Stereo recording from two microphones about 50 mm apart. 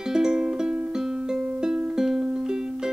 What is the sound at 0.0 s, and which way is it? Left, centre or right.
Music, centre.